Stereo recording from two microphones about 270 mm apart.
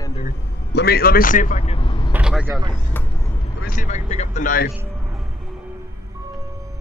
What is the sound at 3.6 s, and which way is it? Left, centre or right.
Speech, left.